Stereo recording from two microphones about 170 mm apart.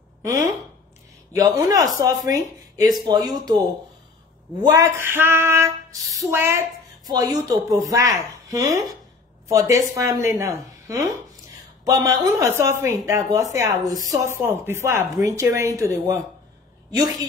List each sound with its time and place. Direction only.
0.2 s a woman's voice: 20° right (ahead or behind)
4.6 s a woman's voice: 20° right (ahead or behind)